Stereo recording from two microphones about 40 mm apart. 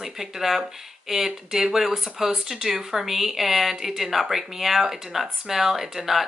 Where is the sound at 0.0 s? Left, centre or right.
Centre.